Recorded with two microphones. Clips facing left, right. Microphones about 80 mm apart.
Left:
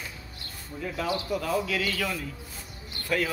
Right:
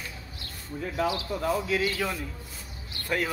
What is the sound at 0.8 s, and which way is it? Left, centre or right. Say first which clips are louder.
Speech: right 1 dB; right.